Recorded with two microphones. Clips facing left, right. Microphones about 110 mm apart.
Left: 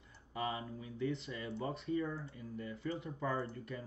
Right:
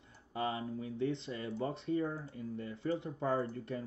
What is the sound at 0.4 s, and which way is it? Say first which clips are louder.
A man's voice: right 3 dB; 30° right (ahead or behind).